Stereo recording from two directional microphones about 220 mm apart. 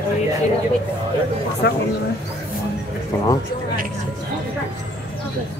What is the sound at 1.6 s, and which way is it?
Speech, 50° left (ahead or behind).